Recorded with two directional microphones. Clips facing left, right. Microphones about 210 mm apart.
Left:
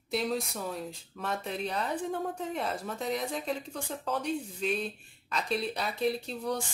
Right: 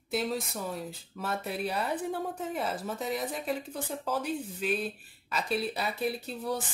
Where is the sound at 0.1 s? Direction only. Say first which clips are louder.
Even; centre (ahead or behind).